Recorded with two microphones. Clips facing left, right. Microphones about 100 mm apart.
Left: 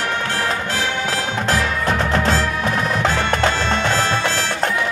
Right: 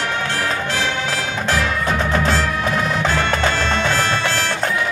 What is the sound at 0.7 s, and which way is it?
Music, 35° left (ahead or behind).